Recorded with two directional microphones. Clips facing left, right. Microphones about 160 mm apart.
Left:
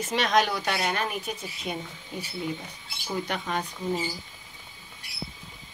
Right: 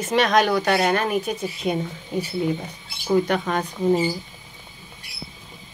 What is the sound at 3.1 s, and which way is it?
Speech, 55° right (ahead or behind).